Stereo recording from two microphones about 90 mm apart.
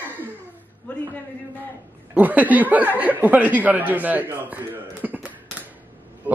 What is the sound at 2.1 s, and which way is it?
Speech, 20° right (ahead or behind).